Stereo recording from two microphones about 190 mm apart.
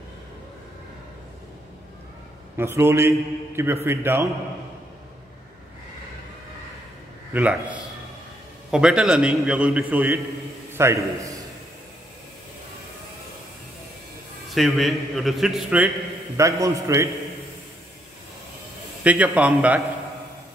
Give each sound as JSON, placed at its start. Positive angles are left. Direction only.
{"t": 2.5, "sound": "a man's voice", "side_deg": -10}
{"t": 7.3, "sound": "a man's voice", "side_deg": -5}
{"t": 14.5, "sound": "a man's voice", "side_deg": 0}
{"t": 16.3, "sound": "a man's voice", "side_deg": -15}
{"t": 19.0, "sound": "a man's voice", "side_deg": -5}